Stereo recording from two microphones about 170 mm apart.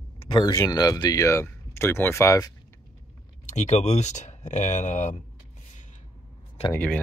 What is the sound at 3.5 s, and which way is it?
Speech, 40° left (ahead or behind).